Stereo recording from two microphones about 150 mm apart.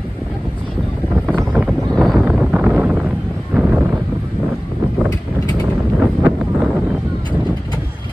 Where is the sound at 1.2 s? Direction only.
10° right (ahead or behind).